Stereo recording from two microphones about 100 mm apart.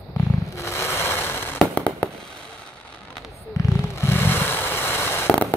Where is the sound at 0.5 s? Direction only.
25° left (ahead or behind).